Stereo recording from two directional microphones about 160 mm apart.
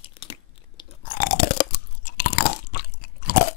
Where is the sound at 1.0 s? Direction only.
60° left (ahead or behind).